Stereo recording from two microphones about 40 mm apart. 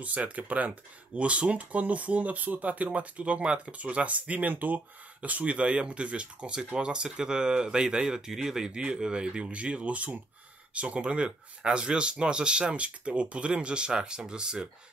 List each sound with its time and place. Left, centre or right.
0.0 s speech: right; by 14.7 s centre